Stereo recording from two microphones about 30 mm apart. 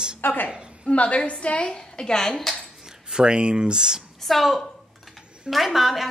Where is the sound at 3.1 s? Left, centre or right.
Right.